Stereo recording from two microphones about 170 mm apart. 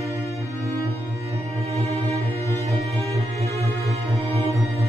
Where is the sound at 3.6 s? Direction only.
35° right (ahead or behind).